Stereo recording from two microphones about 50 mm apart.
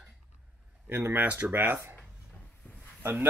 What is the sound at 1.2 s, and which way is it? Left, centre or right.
Speech, right.